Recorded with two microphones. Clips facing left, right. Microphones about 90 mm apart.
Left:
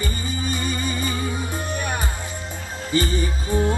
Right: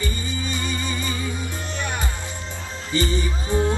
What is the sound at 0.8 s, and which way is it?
Music, 25° right (ahead or behind).